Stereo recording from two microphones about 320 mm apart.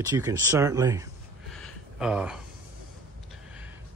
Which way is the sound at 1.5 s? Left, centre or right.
Centre.